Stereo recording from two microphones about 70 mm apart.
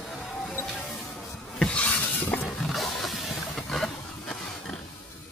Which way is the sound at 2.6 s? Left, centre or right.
Centre.